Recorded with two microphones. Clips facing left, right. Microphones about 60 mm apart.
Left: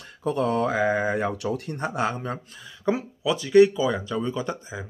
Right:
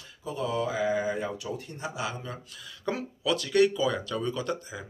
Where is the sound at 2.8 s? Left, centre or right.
Centre.